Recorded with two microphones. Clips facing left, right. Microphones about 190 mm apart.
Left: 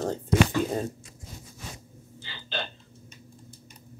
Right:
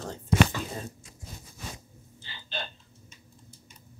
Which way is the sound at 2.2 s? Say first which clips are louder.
Left 4 dB; 85° left.